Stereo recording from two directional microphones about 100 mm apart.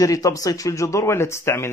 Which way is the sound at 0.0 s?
35° left (ahead or behind).